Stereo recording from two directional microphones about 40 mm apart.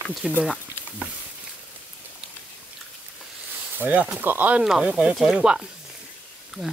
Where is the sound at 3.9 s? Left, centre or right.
Right.